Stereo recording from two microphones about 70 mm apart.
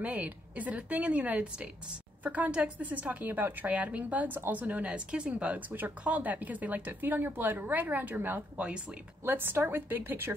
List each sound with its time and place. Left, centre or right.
0.0 s a woman's voice: right
8.6 s speech: centre
9.2 s a woman's voice: right